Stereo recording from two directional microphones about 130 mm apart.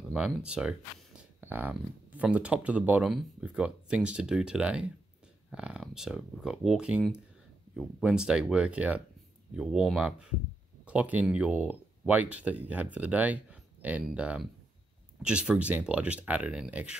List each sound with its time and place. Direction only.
0.1 s speech: 5° right (ahead or behind)